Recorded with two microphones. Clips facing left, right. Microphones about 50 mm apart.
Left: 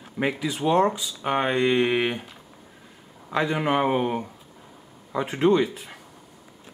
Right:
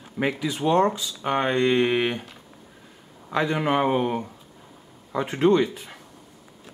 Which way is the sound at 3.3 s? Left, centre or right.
Centre.